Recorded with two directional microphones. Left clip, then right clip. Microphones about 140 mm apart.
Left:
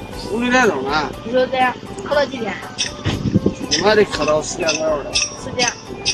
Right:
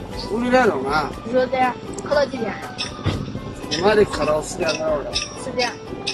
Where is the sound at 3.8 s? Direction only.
20° right (ahead or behind).